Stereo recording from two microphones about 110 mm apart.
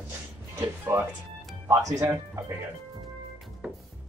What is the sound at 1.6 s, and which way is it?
Speech, 30° right (ahead or behind).